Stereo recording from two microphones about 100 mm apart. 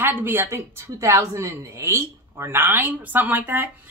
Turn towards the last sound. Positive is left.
turn(degrees=-20)  # may be behind; listen again after turning